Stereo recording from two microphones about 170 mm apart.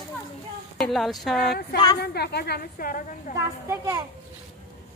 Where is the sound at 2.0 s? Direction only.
75° left (ahead or behind); by 3.3 s 50° left (ahead or behind).